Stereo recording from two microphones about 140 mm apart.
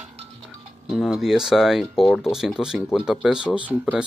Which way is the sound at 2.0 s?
15° left (ahead or behind).